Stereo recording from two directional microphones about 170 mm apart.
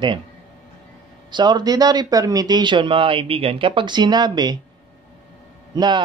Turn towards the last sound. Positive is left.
turn(degrees=-25)  # may be behind; listen again after turning